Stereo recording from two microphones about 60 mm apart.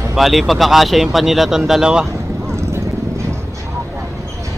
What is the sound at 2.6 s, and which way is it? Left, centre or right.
Vehicle, right.